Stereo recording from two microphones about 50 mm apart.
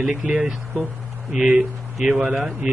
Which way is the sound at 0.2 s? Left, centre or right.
Centre.